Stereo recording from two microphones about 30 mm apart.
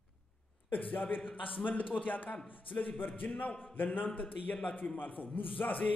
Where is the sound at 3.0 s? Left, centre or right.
Left.